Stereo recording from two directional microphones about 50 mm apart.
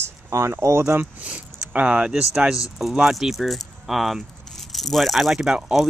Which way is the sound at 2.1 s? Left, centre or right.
Centre.